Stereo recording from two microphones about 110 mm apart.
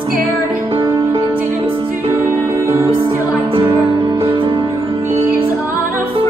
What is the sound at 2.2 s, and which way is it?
Music, 20° right (ahead or behind).